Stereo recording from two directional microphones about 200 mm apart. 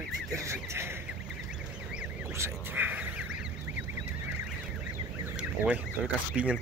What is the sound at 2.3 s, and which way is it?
Speech, 10° right (ahead or behind).